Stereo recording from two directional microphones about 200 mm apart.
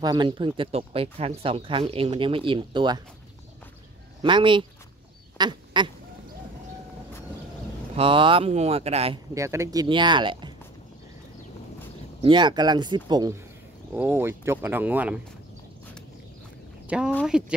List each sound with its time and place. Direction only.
0.0 s speech: 20° right (ahead or behind)
4.2 s speech: 25° right (ahead or behind)
5.4 s duck: 20° right (ahead or behind)
7.9 s speech: 25° right (ahead or behind)
9.3 s speech: 15° right (ahead or behind)
12.2 s speech: 25° right (ahead or behind); by 15.1 s 10° right (ahead or behind)
16.8 s speech: 5° right (ahead or behind)